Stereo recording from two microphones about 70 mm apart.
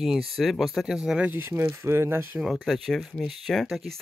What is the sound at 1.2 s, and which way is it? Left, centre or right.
Speech, right.